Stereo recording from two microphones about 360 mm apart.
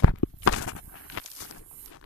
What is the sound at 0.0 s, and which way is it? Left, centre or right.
Walk, left.